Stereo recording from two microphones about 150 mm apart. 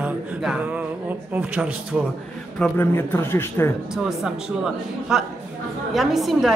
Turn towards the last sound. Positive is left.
turn(degrees=0)  # may be behind; listen again after turning